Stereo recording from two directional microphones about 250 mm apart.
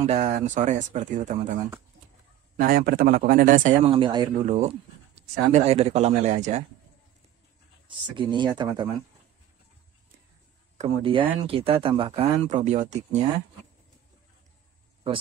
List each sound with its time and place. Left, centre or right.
0.0 s speech: right
8.2 s speech: centre
10.8 s speech: right